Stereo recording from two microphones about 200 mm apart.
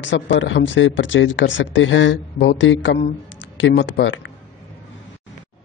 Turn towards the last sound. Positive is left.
turn(degrees=65)  # may be behind; listen again after turning